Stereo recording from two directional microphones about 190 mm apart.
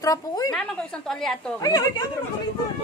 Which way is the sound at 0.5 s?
5° left (ahead or behind).